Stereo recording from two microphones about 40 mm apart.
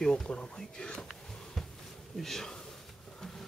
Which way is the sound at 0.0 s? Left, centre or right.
Centre.